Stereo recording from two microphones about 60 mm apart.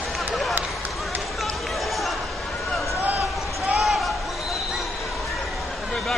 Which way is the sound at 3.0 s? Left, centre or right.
Right.